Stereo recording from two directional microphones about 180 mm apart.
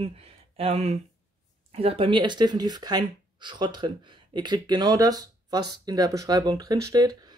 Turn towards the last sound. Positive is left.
turn(degrees=-20)  # may be behind; listen again after turning